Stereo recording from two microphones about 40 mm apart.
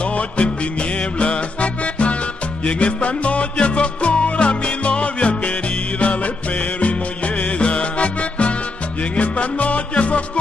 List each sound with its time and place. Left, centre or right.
0.0 s music: left